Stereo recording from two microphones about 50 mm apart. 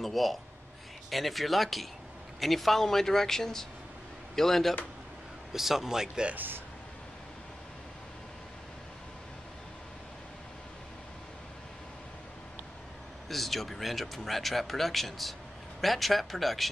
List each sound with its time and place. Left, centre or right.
0.0 s speech: centre
5.5 s a man's voice: centre
6.3 s speech: right
13.3 s speech: centre